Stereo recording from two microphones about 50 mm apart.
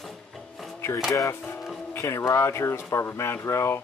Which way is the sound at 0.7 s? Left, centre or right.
Left.